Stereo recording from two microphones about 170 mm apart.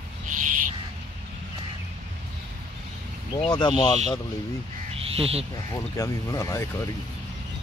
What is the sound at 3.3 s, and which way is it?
Speech, 25° left (ahead or behind).